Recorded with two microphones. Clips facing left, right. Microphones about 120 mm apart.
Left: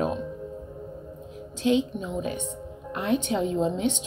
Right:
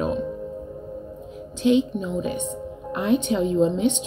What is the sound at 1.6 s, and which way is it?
Speech, 20° right (ahead or behind).